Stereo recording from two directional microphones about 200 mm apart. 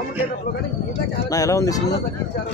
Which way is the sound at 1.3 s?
15° left (ahead or behind).